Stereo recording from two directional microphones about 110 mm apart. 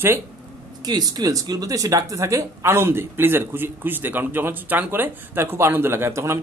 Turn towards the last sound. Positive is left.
turn(degrees=-25)  # may be behind; listen again after turning